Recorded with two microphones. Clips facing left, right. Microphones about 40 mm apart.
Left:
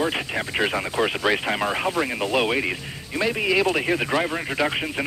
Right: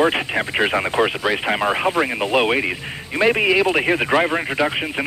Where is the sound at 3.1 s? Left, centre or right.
Right.